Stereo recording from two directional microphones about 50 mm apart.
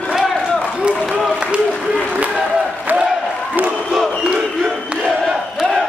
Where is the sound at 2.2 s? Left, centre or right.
Right.